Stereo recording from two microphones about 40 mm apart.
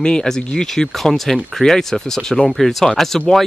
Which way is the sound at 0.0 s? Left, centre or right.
Centre.